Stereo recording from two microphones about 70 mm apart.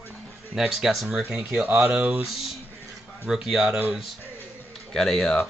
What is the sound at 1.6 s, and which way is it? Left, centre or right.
Speech, right.